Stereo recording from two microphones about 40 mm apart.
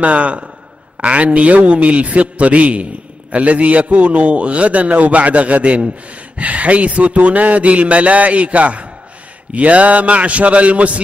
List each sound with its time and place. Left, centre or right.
0.0 s a man's voice: right